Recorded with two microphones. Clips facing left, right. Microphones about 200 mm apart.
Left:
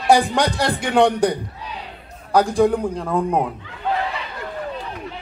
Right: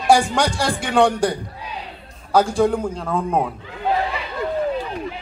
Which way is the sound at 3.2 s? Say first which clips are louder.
Even; centre (ahead or behind).